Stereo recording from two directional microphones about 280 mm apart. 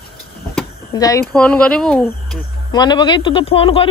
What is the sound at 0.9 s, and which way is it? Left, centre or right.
Speech, centre.